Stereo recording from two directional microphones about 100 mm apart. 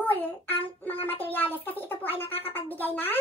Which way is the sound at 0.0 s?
20° left (ahead or behind).